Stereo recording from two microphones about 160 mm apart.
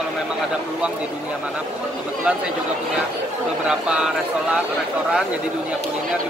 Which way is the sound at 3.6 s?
5° right (ahead or behind).